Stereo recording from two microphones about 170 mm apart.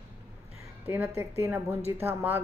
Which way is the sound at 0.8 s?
15° right (ahead or behind).